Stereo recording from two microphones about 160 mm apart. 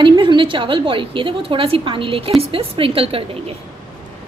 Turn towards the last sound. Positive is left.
turn(degrees=-35)  # may be behind; listen again after turning